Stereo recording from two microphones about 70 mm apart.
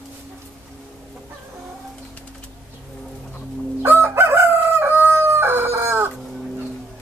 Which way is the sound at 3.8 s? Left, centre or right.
Right.